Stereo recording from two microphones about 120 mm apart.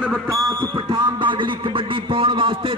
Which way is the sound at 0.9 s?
40° right (ahead or behind).